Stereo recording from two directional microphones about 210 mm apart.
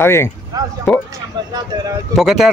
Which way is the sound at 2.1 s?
Centre (ahead or behind).